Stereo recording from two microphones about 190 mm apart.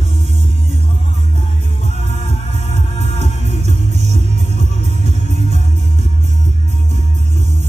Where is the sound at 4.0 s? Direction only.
35° right (ahead or behind).